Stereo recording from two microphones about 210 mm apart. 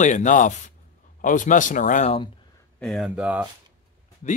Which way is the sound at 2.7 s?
Centre (ahead or behind).